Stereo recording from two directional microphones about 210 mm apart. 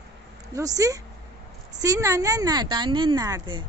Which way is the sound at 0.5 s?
15° right (ahead or behind).